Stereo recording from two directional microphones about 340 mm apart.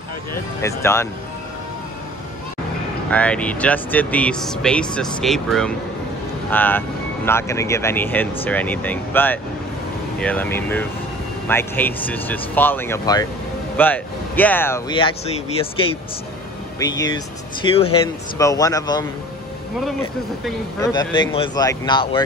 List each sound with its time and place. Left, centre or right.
0.3 s speech: centre
3.1 s speech: centre
16.8 s speech: centre
20.4 s speech: centre